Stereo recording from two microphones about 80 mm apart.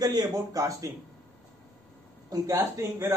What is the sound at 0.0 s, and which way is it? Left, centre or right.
Speech, right.